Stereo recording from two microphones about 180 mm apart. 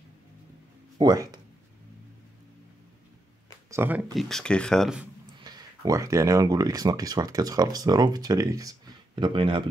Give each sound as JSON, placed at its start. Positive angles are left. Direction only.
{"t": 0.9, "sound": "speech", "side_deg": -20}
{"t": 3.7, "sound": "speech", "side_deg": -10}
{"t": 4.1, "sound": "speech", "side_deg": 0}
{"t": 5.4, "sound": "speech", "side_deg": -20}